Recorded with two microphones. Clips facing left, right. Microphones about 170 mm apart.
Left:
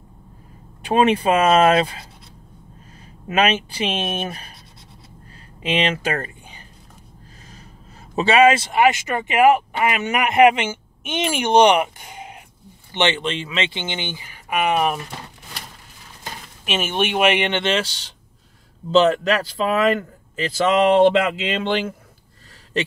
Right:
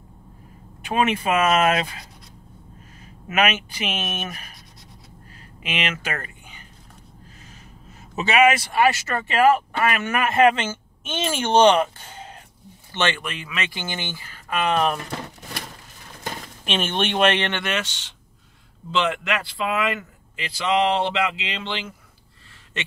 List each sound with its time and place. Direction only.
0.8 s speech: 30° left (ahead or behind)
3.3 s speech: 30° left (ahead or behind)
5.6 s speech: 30° left (ahead or behind)
8.2 s speech: 30° left (ahead or behind); by 15.0 s 10° left (ahead or behind)
16.6 s speech: 5° left (ahead or behind); by 21.9 s 50° left (ahead or behind)